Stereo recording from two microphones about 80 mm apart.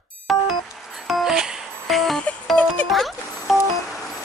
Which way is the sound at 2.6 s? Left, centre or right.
Left.